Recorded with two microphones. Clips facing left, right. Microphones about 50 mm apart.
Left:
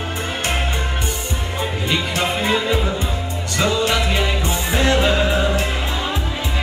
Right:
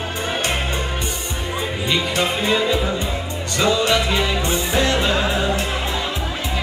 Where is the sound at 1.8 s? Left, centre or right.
Centre.